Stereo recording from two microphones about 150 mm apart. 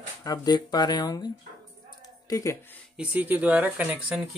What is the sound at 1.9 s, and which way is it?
Music, 25° left (ahead or behind).